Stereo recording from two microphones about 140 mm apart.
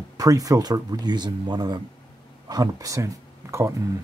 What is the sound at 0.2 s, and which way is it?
Speech, 25° right (ahead or behind).